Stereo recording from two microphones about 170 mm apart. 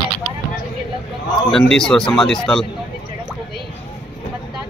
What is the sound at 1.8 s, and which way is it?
Speech, 5° left (ahead or behind).